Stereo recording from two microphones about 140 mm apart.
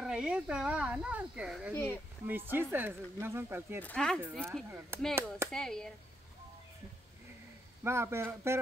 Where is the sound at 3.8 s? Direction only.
10° left (ahead or behind).